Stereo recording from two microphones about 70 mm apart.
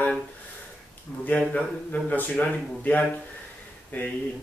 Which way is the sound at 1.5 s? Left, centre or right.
Left.